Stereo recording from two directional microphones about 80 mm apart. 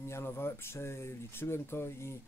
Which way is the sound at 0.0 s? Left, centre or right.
Left.